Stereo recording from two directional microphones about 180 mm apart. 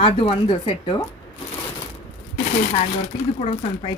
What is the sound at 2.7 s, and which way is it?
Speech, 35° left (ahead or behind).